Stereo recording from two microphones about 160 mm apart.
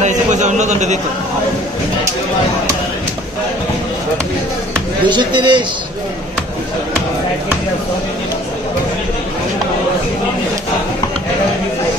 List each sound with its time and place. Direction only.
0.0 s a man's voice: 50° right (ahead or behind)
5.0 s speech: 30° right (ahead or behind)